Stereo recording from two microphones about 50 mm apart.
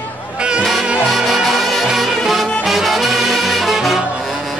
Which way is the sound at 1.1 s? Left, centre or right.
Centre.